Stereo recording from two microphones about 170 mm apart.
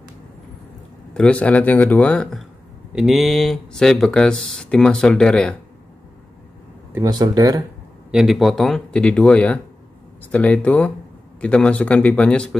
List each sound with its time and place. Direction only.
1.1 s speech: 5° left (ahead or behind)
2.9 s speech: 5° right (ahead or behind)
6.9 s speech: 20° right (ahead or behind)
8.1 s speech: centre (ahead or behind)